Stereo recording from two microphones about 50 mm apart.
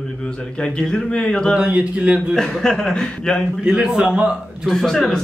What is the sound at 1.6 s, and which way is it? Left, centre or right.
Speech, right.